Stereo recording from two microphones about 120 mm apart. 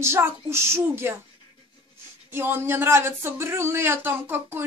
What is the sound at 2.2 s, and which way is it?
Speech, 20° right (ahead or behind).